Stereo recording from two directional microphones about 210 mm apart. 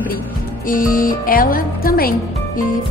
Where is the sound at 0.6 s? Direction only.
40° left (ahead or behind).